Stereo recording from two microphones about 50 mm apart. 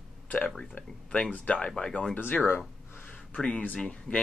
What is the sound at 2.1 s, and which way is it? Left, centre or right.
Speech, left.